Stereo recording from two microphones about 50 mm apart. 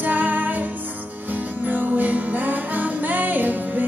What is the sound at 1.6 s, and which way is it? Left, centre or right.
Music, right.